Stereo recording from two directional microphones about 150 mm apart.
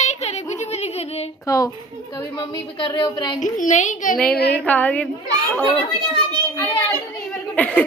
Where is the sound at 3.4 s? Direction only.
60° left (ahead or behind).